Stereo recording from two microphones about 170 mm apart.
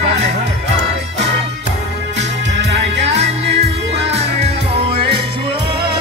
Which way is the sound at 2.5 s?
90° right.